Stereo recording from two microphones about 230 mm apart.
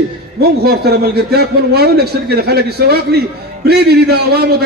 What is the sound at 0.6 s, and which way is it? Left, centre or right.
A man's voice, right.